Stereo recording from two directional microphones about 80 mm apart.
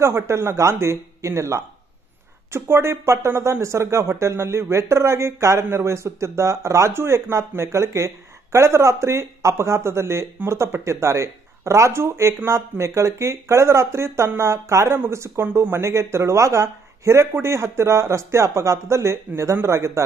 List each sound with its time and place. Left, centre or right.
0.0 s speech: right